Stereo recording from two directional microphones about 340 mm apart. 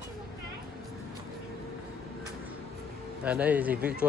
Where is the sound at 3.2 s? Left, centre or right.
Centre.